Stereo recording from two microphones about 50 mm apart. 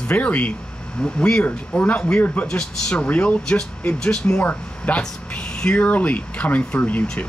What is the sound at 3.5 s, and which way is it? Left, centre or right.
Speech, centre.